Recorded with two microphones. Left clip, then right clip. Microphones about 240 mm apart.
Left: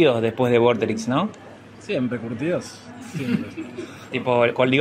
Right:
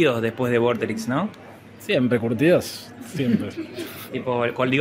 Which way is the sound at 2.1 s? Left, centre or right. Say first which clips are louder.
Right 7 dB; right.